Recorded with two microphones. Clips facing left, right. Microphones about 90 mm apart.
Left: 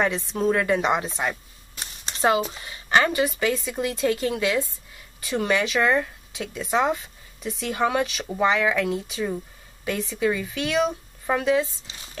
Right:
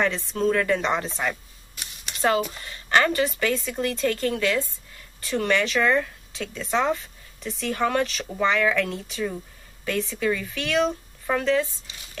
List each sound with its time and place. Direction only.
0.0 s speech: 15° left (ahead or behind)
1.8 s a sound: 30° left (ahead or behind)
2.5 s speech: 15° left (ahead or behind)